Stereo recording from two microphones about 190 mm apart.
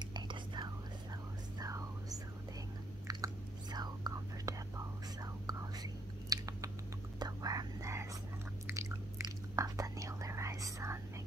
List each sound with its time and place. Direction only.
0.1 s whispering: 25° right (ahead or behind)
3.1 s chewing: 20° right (ahead or behind)
3.7 s whispering: 20° right (ahead or behind)
8.6 s biting: 15° right (ahead or behind)
9.6 s whispering: 15° right (ahead or behind)